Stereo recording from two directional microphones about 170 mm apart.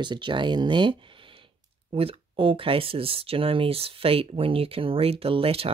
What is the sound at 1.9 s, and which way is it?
Speech, 30° right (ahead or behind).